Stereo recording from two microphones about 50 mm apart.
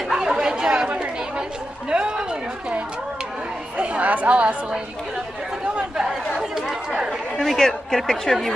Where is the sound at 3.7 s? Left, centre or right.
Right.